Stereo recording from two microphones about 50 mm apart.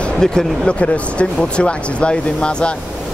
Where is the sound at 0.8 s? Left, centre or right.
Left.